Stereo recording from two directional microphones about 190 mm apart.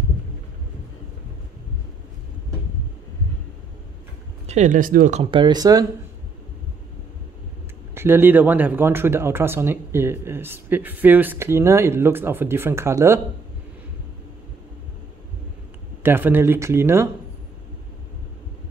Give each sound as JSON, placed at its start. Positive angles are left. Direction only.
{"t": 4.5, "sound": "speech", "side_deg": -40}
{"t": 5.2, "sound": "speech", "side_deg": -25}
{"t": 7.9, "sound": "speech", "side_deg": -10}
{"t": 16.0, "sound": "speech", "side_deg": -10}